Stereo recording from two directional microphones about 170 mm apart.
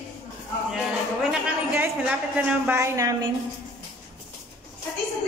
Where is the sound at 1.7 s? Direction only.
10° right (ahead or behind).